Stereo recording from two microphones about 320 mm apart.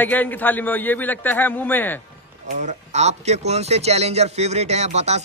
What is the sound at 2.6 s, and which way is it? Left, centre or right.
Speech, right.